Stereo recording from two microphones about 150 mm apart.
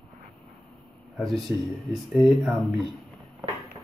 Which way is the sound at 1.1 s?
Centre (ahead or behind).